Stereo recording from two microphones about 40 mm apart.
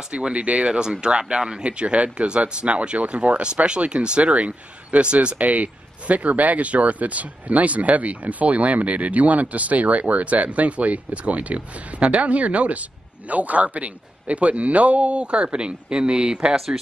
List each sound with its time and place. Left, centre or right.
0.1 s speech: right
16.5 s speech: centre